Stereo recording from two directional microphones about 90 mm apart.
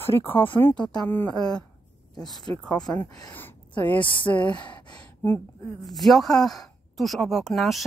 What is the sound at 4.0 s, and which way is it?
Speech, 65° left (ahead or behind).